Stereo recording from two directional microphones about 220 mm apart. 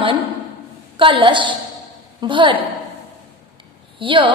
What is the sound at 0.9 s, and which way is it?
A woman's voice, 20° right (ahead or behind).